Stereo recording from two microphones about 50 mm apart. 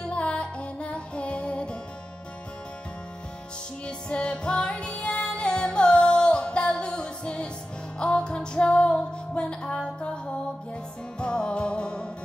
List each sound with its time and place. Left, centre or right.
0.0 s music: left
3.8 s music: left